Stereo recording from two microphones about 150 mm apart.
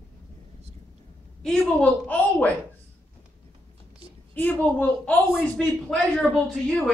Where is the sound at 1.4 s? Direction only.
Centre (ahead or behind).